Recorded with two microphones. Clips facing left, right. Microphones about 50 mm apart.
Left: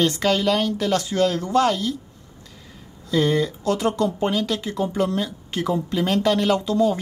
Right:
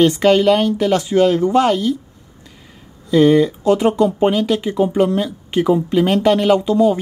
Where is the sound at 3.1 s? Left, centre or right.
Centre.